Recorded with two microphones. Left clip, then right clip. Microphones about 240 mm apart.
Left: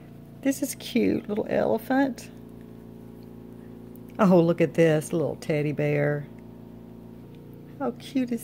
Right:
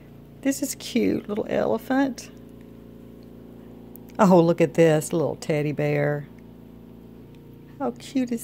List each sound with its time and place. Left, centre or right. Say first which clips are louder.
0.4 s speech: right 1 dB; centre
4.2 s speech: right 3 dB; centre
7.8 s speech: right 2 dB; centre